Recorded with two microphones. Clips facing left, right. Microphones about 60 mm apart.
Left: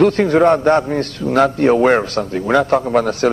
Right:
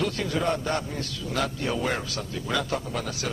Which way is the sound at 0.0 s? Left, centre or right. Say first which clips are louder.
Left 15 dB; left.